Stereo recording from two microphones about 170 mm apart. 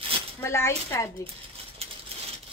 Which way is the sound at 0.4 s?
15° left (ahead or behind).